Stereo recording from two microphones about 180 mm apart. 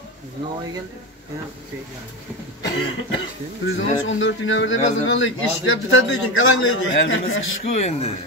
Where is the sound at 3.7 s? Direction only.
90° left.